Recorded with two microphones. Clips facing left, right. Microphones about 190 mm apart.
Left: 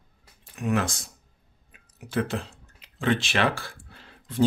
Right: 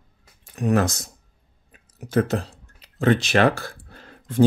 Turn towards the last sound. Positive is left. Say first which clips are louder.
# right 6 dB
turn(degrees=-45)  # may be behind; listen again after turning